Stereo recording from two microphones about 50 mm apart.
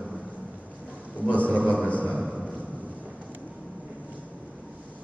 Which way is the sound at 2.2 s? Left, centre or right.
Centre.